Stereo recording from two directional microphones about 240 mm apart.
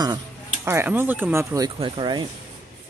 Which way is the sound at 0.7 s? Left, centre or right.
Centre.